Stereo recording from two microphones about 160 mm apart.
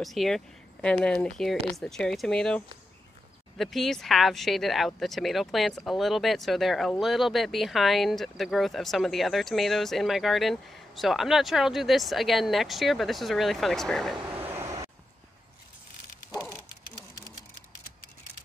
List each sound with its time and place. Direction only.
0.0 s speech: centre (ahead or behind)
14.4 s vehicle: 15° right (ahead or behind)
16.3 s a sound: 25° left (ahead or behind)